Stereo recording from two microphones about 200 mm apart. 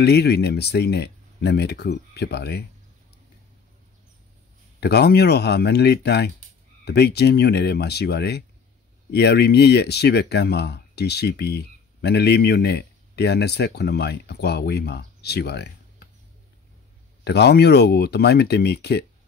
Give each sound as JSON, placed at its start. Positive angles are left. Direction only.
{"t": 0.0, "sound": "speech", "side_deg": 55}
{"t": 4.7, "sound": "speech", "side_deg": 55}
{"t": 17.2, "sound": "speech", "side_deg": 55}